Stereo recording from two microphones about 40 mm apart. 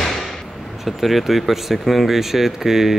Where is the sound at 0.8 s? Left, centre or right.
Centre.